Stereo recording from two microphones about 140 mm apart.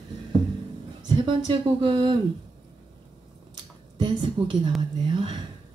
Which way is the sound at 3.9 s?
35° right (ahead or behind).